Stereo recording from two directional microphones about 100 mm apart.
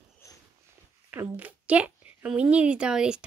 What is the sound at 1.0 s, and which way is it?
A woman's voice, 20° right (ahead or behind).